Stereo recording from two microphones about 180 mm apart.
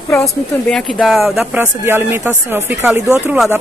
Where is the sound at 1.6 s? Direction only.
10° right (ahead or behind).